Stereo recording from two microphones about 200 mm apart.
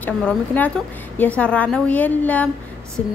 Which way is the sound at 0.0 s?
5° left (ahead or behind).